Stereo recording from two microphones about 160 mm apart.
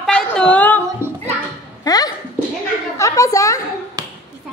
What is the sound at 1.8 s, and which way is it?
A woman's voice, 25° left (ahead or behind).